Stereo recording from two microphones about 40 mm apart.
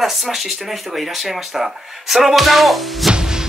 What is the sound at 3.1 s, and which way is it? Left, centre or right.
Music, centre.